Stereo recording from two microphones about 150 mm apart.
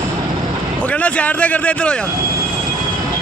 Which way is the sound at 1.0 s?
10° left (ahead or behind).